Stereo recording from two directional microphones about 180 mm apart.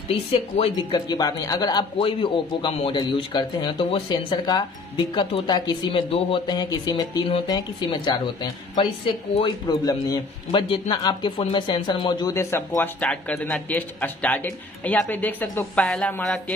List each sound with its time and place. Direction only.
0.1 s speech: 30° left (ahead or behind); by 16.5 s 5° left (ahead or behind)